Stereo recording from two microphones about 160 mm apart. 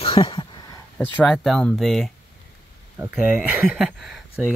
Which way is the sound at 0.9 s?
5° left (ahead or behind).